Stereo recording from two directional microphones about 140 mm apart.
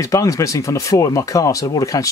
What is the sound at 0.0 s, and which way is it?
Speech, 20° left (ahead or behind).